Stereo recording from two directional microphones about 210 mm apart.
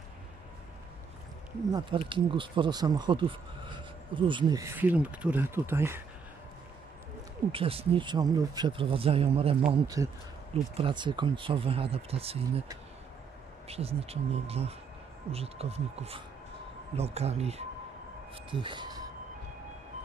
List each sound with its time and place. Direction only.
1.7 s speech: 25° right (ahead or behind)
7.5 s speech: 25° right (ahead or behind)
9.7 s speech: 15° right (ahead or behind)
13.7 s speech: 30° right (ahead or behind)